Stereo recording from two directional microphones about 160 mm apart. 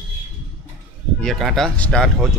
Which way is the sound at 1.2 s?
Centre (ahead or behind).